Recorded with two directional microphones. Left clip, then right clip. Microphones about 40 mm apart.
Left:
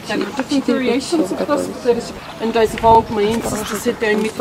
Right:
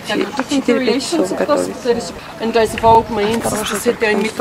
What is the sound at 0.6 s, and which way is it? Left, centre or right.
Speech, centre.